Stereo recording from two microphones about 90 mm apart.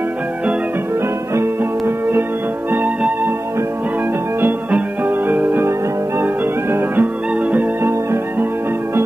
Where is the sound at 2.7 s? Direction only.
20° right (ahead or behind).